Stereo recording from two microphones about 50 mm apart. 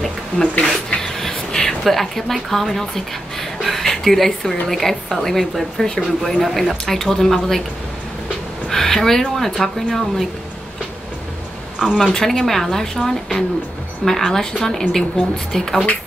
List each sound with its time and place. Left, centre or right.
0.0 s a sound: centre
3.3 s a woman's voice: centre
8.6 s a woman's voice: centre
11.8 s a woman's voice: centre